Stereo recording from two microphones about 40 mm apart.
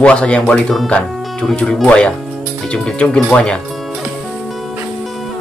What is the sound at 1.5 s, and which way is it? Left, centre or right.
Speech, centre.